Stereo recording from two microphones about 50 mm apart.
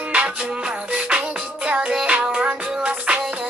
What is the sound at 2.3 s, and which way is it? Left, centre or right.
Music, right.